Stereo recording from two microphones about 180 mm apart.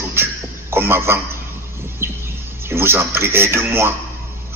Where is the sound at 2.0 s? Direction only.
15° right (ahead or behind).